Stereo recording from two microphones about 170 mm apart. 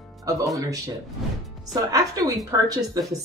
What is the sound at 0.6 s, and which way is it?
Speech, 20° right (ahead or behind).